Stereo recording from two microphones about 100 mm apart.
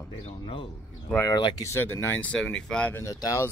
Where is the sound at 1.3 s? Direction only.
55° left (ahead or behind).